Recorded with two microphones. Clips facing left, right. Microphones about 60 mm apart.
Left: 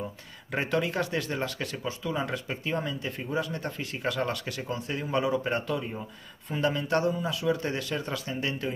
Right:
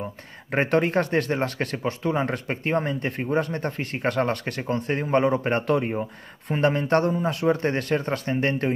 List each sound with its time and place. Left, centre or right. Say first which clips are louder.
0.5 s speech: right 7 dB; right